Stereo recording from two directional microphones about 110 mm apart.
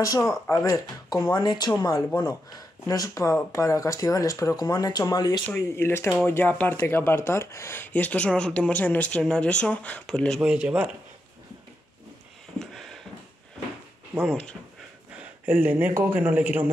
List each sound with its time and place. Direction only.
0.0 s speech: 30° left (ahead or behind)
5.5 s speech: 20° left (ahead or behind); by 10.4 s 5° left (ahead or behind)
10.4 s a man's voice: 10° right (ahead or behind)
12.5 s a sound: centre (ahead or behind)
14.3 s speech: 10° left (ahead or behind)
15.4 s a man's voice: 20° right (ahead or behind)